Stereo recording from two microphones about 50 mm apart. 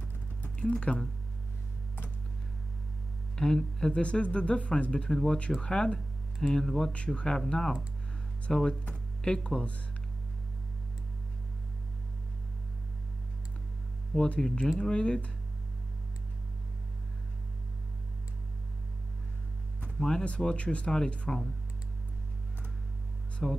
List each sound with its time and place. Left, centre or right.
0.4 s a sound: left
3.3 s speech: centre
5.9 s speech: centre
14.1 s speech: centre
20.0 s speech: centre
20.2 s speech: left
23.4 s speech: centre